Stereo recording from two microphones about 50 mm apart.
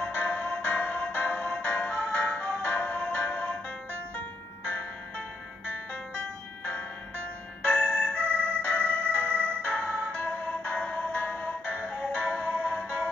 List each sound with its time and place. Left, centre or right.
0.0 s music: left
4.6 s music: left
6.6 s music: left
7.6 s music: left